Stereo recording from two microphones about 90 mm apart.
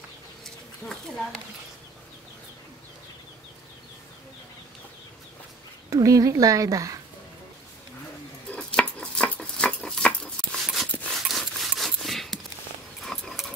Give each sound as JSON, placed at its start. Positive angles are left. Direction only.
{"t": 0.8, "sound": "speech", "side_deg": 5}
{"t": 5.9, "sound": "speech", "side_deg": -40}
{"t": 8.5, "sound": "cutlery", "side_deg": 10}
{"t": 10.6, "sound": "a sound", "side_deg": 0}